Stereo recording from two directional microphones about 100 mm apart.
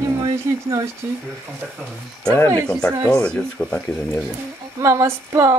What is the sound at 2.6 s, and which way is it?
Speech, 10° left (ahead or behind).